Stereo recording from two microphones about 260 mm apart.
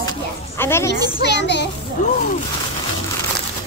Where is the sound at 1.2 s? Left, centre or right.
Left.